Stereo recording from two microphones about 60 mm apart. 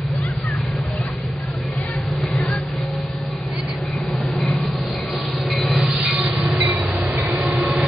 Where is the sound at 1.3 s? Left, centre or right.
Centre.